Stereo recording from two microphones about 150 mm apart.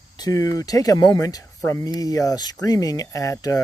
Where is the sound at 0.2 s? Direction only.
25° left (ahead or behind).